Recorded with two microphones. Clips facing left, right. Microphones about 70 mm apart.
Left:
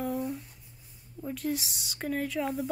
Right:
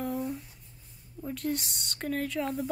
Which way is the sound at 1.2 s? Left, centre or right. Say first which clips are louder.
Even; centre.